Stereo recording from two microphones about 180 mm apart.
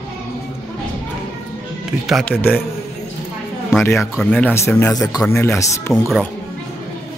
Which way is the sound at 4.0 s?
Centre (ahead or behind).